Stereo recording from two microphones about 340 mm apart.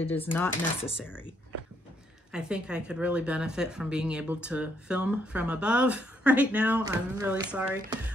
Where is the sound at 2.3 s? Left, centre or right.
Centre.